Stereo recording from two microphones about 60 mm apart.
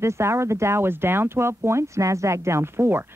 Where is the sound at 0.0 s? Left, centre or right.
Right.